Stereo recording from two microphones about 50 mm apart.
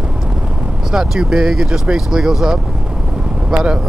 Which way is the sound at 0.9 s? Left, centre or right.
Centre.